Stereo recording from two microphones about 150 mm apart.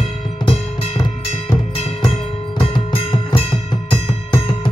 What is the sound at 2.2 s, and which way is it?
Music, 35° left (ahead or behind).